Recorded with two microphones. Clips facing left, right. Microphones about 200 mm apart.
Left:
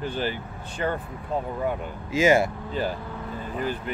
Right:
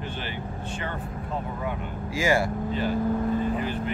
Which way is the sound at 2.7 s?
40° left (ahead or behind).